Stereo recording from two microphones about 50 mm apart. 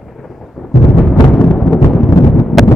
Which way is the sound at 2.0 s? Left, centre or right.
Centre.